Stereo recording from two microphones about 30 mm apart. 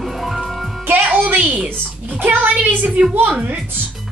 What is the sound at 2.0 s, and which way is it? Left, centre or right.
Speech, right.